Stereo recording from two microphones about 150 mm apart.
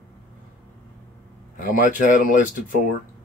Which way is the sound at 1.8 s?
65° left (ahead or behind).